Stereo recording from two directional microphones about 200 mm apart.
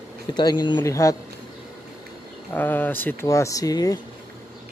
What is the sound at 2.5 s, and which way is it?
Speech, 10° left (ahead or behind).